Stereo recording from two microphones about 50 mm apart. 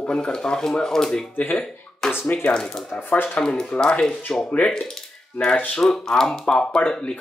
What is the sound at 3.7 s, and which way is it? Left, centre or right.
Speech, left.